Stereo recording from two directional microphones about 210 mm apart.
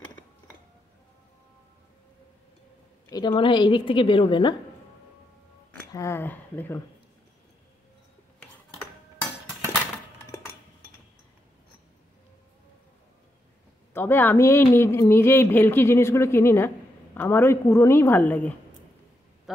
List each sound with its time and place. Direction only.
3.1 s a woman's voice: 20° left (ahead or behind)
5.7 s speech: 10° left (ahead or behind)
13.9 s speech: 10° left (ahead or behind)